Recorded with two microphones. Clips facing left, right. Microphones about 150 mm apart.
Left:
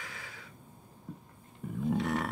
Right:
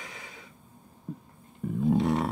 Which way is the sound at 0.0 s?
20° right (ahead or behind).